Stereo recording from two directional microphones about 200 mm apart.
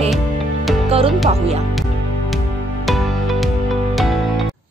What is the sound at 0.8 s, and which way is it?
Music, 30° right (ahead or behind).